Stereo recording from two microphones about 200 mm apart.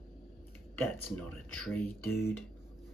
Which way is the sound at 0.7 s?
10° left (ahead or behind).